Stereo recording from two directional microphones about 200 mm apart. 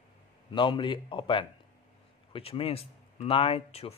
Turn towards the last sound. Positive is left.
turn(degrees=30)  # may be behind; listen again after turning